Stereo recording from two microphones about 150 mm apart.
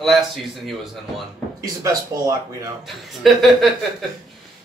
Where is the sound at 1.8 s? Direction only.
20° right (ahead or behind).